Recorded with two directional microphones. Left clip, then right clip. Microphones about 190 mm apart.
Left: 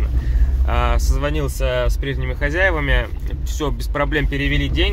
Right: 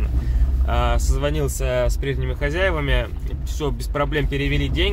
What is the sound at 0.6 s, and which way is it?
Speech, 10° right (ahead or behind).